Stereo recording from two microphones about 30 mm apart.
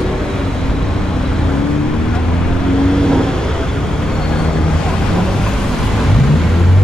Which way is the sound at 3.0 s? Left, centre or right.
Left.